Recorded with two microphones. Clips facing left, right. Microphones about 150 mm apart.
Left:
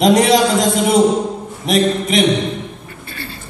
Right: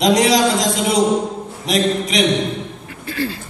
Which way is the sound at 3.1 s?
90° right.